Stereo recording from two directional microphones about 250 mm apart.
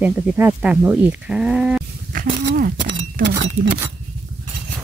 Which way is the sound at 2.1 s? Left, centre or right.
Right.